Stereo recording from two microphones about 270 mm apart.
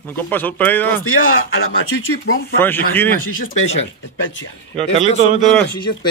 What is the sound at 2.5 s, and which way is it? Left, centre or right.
Speech, centre.